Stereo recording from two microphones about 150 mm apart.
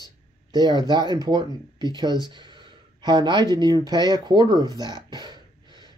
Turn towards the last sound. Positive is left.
turn(degrees=-30)  # may be behind; listen again after turning